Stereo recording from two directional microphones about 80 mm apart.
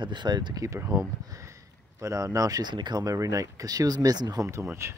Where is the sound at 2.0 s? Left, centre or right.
Right.